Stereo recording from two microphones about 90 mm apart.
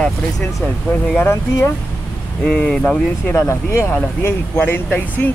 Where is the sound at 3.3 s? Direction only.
30° left (ahead or behind).